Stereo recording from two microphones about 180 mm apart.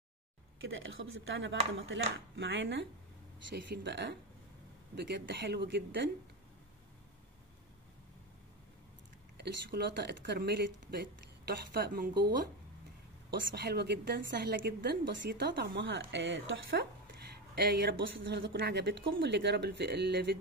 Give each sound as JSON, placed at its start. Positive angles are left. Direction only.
{"t": 0.6, "sound": "speech", "side_deg": -90}
{"t": 3.4, "sound": "a woman's voice", "side_deg": -70}
{"t": 9.4, "sound": "speech", "side_deg": -65}
{"t": 13.3, "sound": "a woman's voice", "side_deg": -70}
{"t": 17.6, "sound": "a woman's voice", "side_deg": -65}